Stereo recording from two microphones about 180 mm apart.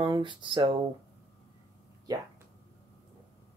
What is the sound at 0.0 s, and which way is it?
Speech, 25° right (ahead or behind).